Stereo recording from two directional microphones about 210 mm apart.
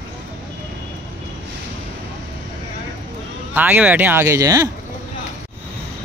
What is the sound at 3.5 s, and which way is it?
Speech, 10° right (ahead or behind).